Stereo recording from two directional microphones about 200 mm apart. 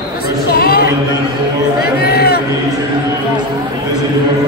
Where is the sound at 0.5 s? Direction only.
50° left (ahead or behind).